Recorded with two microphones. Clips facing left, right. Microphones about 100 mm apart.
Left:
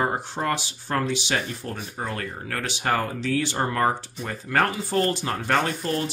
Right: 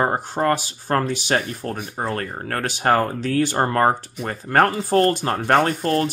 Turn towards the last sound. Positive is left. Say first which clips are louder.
# right 6 dB
turn(degrees=-45)  # may be behind; listen again after turning